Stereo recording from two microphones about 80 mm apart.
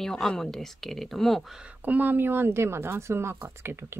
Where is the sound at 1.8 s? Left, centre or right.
Right.